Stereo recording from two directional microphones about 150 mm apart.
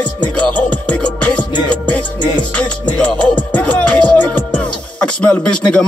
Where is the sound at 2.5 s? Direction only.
10° left (ahead or behind).